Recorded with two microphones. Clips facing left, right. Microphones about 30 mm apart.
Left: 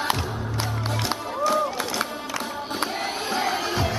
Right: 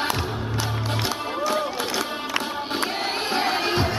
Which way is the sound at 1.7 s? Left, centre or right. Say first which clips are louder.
Right 1 dB; right.